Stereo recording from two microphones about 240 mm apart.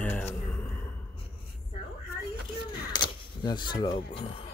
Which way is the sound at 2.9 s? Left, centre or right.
Centre.